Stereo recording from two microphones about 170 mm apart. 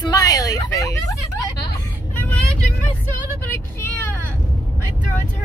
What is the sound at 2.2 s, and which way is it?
Vehicle, 10° left (ahead or behind).